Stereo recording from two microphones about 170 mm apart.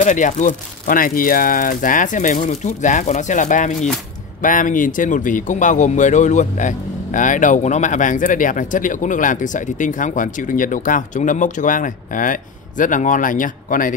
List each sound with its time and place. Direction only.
0.0 s speech: 45° left (ahead or behind)